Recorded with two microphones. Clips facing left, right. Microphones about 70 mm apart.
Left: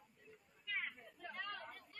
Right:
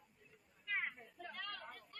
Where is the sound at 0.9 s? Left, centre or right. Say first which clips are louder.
Even; centre.